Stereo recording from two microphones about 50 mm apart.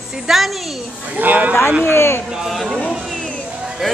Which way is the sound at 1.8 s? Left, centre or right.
Left.